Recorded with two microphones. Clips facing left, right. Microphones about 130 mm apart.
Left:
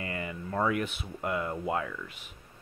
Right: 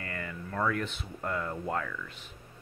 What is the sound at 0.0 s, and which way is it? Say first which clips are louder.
Speech: left 3 dB; 15° left (ahead or behind).